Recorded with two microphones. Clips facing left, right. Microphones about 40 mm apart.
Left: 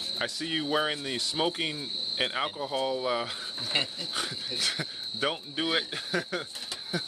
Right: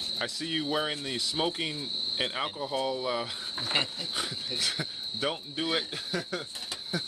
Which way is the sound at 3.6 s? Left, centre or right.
Centre.